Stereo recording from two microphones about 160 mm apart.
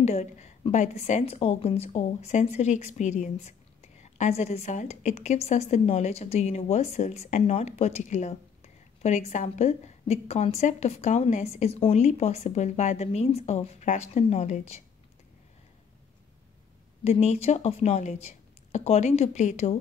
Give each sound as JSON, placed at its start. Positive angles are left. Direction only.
{"t": 0.0, "sound": "a woman's voice", "side_deg": 45}
{"t": 17.0, "sound": "a woman's voice", "side_deg": 45}